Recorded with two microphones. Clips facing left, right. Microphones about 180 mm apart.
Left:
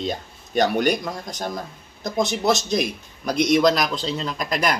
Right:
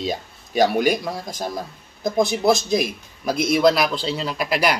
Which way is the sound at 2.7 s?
5° right (ahead or behind).